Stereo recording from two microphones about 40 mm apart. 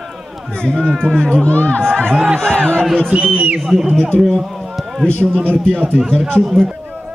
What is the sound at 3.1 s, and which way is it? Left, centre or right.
Speech, right.